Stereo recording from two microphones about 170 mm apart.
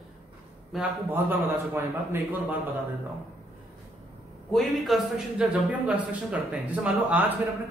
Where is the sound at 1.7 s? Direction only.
15° right (ahead or behind).